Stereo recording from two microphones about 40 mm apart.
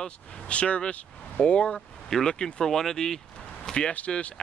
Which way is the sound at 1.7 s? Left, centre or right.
Centre.